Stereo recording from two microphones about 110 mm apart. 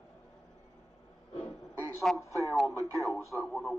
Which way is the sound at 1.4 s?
15° left (ahead or behind).